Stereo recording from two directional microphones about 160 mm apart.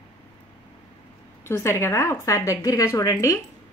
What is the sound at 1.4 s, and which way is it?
A woman's voice, 20° left (ahead or behind).